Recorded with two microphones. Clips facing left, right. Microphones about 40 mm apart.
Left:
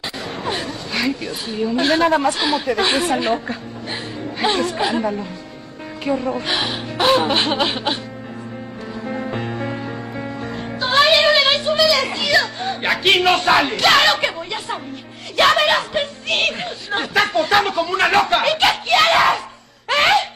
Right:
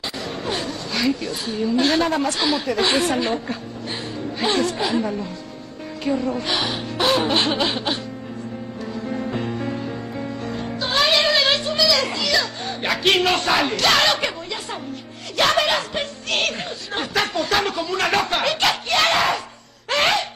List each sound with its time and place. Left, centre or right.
0.6 s a woman's voice: centre
4.6 s a woman's voice: centre
9.0 s music: left
12.9 s a sound: centre
13.7 s a woman's voice: centre
15.3 s speech: left
17.3 s a sound: centre
17.6 s a woman's voice: centre
18.2 s a woman's voice: centre
19.9 s gasp: centre